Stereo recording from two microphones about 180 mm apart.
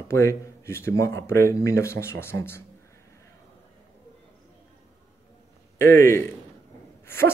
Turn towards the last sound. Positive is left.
turn(degrees=15)  # may be behind; listen again after turning